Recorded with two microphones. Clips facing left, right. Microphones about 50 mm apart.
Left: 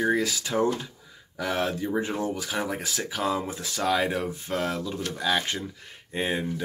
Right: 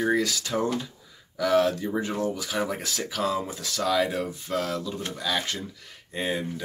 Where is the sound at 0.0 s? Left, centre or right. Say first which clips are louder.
Even; centre.